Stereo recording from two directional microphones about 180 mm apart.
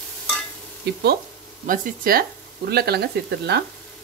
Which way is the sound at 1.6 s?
50° right (ahead or behind).